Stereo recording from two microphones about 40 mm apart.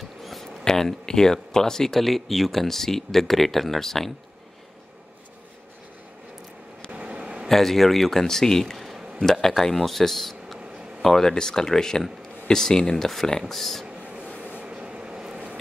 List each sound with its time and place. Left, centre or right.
0.2 s a sound: centre
0.7 s speech: centre
6.9 s vehicle: right
7.4 s speech: centre
8.7 s a sound: centre
9.2 s speech: centre
14.6 s train: right